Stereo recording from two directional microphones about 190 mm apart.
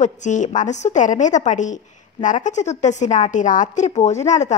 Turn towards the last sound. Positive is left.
turn(degrees=40)  # may be behind; listen again after turning